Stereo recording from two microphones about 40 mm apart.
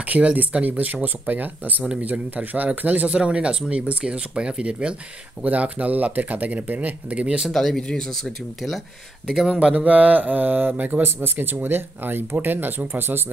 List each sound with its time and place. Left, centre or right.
0.0 s speech: right
1.0 s mantra: right
2.0 s speech: right
3.1 s speech: right
5.4 s speech: right
7.5 s speech: centre
9.3 s speech: centre
9.8 s mantra: right
11.0 s speech: right